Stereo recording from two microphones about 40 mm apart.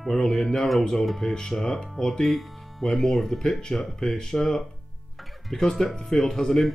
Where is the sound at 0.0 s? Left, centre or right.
Centre.